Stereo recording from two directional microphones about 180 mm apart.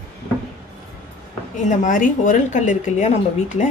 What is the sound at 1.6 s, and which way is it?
A woman's voice, 45° left (ahead or behind).